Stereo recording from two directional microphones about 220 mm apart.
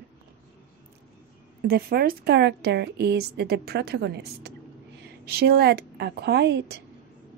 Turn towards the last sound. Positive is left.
turn(degrees=-50)  # may be behind; listen again after turning